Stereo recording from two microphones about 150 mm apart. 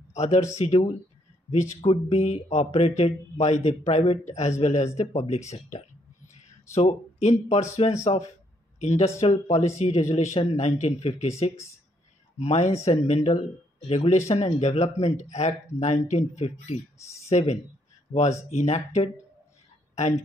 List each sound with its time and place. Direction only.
0.1 s speech: 50° left (ahead or behind)